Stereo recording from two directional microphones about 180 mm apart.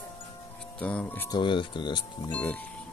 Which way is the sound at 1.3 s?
25° left (ahead or behind).